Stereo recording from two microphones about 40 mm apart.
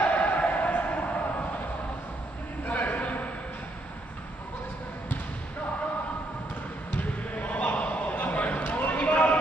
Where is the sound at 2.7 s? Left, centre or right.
Left.